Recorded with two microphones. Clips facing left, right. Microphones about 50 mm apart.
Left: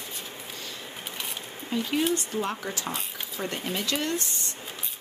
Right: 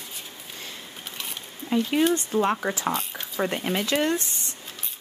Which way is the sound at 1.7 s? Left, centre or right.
Right.